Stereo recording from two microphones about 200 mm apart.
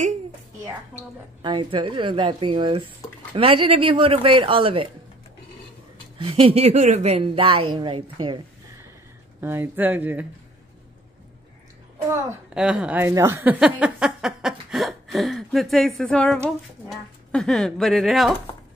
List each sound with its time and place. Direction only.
1.4 s speech: 25° right (ahead or behind)
6.1 s speech: 25° right (ahead or behind)
9.4 s speech: 10° right (ahead or behind)
12.1 s a child's voice: 10° right (ahead or behind)